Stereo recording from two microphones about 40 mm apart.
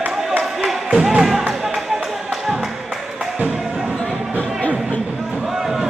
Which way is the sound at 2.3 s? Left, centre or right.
Centre.